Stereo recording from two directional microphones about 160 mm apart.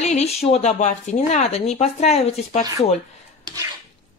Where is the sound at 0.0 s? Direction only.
40° left (ahead or behind).